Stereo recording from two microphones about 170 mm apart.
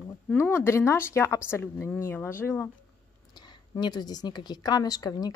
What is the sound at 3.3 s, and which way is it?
A woman's voice, 25° left (ahead or behind).